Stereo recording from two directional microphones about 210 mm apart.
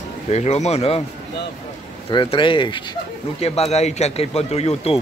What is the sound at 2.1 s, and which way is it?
Speech, 20° left (ahead or behind).